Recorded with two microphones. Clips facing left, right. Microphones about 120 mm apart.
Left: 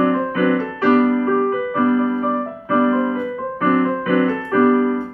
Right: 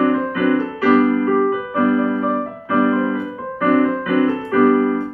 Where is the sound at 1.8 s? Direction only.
25° left (ahead or behind).